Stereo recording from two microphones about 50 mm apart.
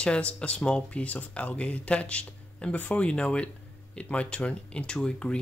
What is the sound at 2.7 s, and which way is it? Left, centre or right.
Speech, left.